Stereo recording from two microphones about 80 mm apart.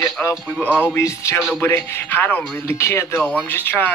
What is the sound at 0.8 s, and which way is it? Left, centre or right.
Speech, left.